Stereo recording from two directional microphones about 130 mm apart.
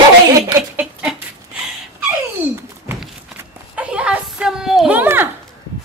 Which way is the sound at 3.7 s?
10° right (ahead or behind).